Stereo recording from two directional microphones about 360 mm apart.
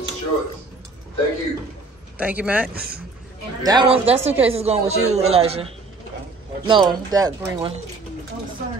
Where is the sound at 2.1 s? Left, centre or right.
Centre.